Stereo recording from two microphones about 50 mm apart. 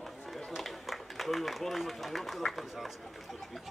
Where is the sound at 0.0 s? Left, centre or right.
Centre.